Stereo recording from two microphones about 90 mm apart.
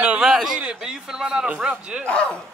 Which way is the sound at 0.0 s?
15° right (ahead or behind).